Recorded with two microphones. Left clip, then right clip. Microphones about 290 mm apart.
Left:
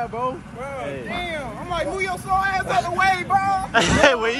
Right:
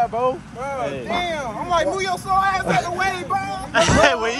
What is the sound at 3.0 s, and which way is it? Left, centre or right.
Speech, left.